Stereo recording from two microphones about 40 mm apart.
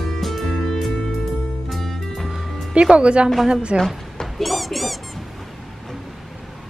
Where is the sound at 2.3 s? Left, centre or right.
Right.